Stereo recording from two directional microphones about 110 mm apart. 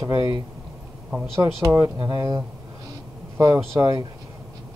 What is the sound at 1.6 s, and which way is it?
Speech, 35° right (ahead or behind).